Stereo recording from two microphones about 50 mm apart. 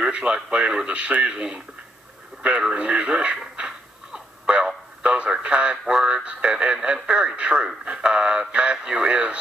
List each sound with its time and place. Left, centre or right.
0.0 s speech: right
2.7 s speech: right
3.5 s a sound: centre
4.6 s radio: centre
5.9 s speech: centre